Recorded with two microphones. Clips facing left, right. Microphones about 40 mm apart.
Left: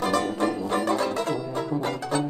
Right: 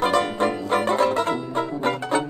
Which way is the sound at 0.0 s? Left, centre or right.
Right.